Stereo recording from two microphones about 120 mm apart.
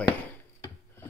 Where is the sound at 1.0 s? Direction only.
20° left (ahead or behind).